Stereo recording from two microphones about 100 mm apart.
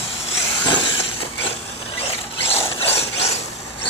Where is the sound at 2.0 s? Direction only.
75° left (ahead or behind).